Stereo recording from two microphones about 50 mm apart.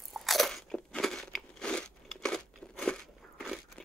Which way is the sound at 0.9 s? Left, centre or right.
Centre.